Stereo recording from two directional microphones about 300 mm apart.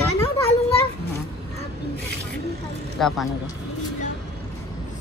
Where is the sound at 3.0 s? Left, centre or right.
Centre.